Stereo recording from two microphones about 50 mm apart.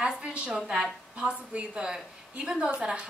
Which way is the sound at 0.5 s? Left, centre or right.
Centre.